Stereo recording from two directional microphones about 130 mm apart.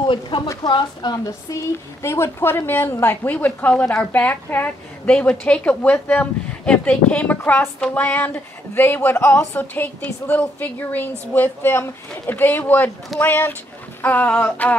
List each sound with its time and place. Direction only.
0.0 s a woman's voice: 40° left (ahead or behind); by 14.8 s 10° left (ahead or behind)